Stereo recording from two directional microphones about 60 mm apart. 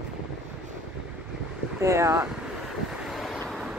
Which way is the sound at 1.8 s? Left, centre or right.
Right.